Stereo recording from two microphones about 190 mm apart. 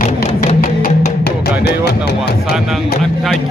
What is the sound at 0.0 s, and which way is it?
Music, 35° left (ahead or behind).